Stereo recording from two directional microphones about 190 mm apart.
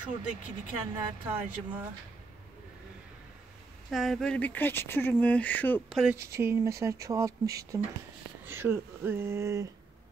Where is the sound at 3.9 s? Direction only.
Centre (ahead or behind).